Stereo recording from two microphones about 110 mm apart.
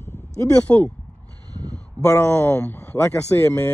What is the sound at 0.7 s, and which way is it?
Speech, 15° left (ahead or behind).